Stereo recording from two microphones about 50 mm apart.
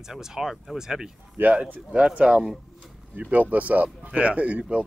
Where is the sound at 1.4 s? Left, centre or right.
Right.